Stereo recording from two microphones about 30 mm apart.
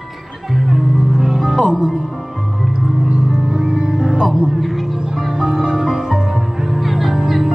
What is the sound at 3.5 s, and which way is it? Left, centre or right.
Music, right.